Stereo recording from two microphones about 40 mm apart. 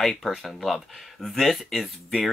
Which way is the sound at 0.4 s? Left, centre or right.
Centre.